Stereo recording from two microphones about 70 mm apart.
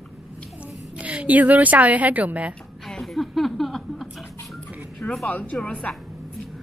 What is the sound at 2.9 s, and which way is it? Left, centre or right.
Speech, centre.